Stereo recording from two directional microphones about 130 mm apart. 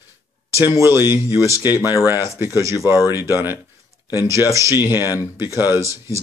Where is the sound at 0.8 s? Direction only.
20° right (ahead or behind).